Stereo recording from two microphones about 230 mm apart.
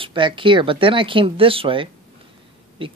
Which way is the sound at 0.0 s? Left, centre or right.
Right.